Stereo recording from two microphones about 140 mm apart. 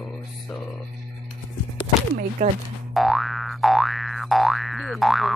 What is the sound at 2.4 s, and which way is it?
Speech, 60° right (ahead or behind).